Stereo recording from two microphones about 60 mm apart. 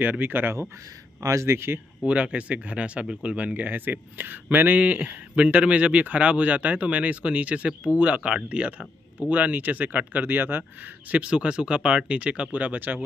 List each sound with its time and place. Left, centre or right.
0.0 s speech: right
1.2 s speech: right
1.5 s speech: right
2.0 s speech: right
11.1 s speech: centre